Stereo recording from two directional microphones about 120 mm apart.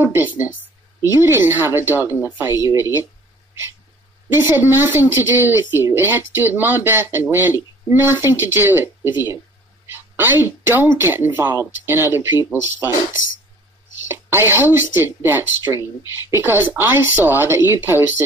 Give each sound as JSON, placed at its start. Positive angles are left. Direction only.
{"t": 0.0, "sound": "a woman's voice", "side_deg": -20}
{"t": 4.3, "sound": "a woman's voice", "side_deg": -20}
{"t": 14.0, "sound": "a woman's voice", "side_deg": -20}